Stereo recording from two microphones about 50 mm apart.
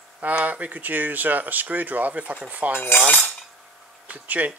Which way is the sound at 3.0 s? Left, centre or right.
Left.